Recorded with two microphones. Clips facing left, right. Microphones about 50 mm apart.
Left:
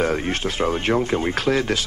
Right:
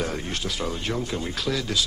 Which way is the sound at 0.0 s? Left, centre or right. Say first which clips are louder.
Left 7 dB; left.